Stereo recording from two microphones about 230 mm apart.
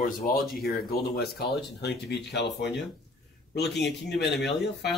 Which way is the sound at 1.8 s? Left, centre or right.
Left.